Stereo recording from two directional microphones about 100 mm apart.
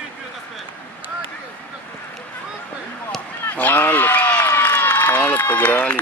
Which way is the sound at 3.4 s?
20° left (ahead or behind).